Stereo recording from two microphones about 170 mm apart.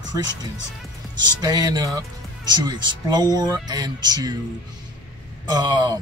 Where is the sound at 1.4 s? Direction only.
25° right (ahead or behind).